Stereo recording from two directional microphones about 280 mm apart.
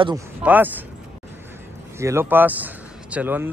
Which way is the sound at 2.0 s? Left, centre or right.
Centre.